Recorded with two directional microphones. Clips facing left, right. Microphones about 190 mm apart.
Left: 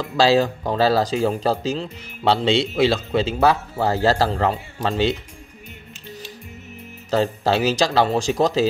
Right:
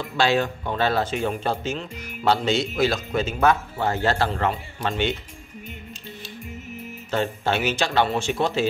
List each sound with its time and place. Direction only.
0.0 s speech: 35° left (ahead or behind)
7.1 s speech: 35° left (ahead or behind)